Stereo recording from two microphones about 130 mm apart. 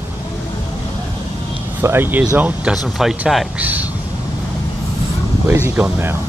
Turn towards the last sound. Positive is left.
turn(degrees=-15)  # may be behind; listen again after turning